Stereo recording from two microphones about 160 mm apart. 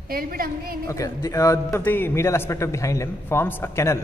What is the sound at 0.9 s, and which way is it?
A man's voice, 20° left (ahead or behind).